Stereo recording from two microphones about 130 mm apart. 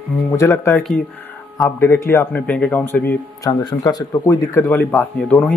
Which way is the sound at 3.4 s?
30° left (ahead or behind).